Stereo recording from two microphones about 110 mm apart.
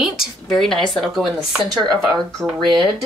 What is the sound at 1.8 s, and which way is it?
Speech, 40° right (ahead or behind).